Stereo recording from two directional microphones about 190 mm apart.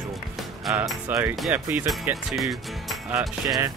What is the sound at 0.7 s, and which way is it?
Speech, 5° right (ahead or behind).